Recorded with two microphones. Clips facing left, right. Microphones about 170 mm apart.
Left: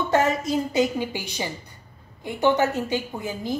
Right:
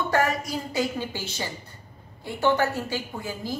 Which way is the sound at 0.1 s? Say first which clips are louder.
Left 5 dB; 25° left (ahead or behind).